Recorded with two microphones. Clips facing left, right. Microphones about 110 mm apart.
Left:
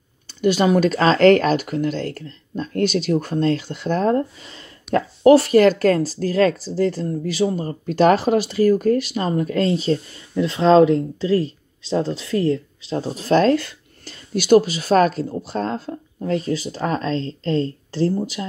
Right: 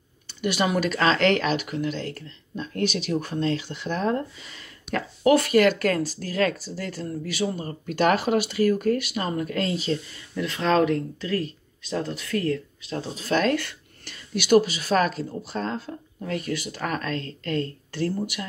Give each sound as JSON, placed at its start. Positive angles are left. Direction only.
{"t": 0.3, "sound": "speech", "side_deg": 35}
{"t": 13.1, "sound": "speech", "side_deg": 40}
{"t": 16.3, "sound": "speech", "side_deg": 30}